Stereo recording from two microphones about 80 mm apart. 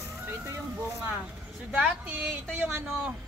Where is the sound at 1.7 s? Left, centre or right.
Centre.